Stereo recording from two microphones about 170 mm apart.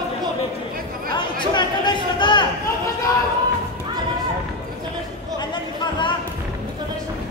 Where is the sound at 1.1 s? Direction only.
25° left (ahead or behind).